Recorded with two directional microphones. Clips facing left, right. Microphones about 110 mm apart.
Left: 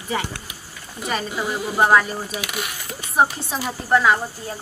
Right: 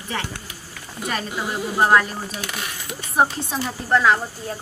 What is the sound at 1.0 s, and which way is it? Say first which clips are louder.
Speech: left 2 dB; centre (ahead or behind).